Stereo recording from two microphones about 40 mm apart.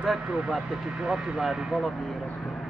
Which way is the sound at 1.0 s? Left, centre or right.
Centre.